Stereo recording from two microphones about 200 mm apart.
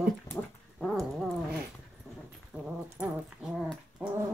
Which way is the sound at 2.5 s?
5° right (ahead or behind).